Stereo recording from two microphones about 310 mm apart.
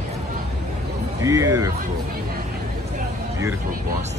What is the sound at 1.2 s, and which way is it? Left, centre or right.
Speech, centre.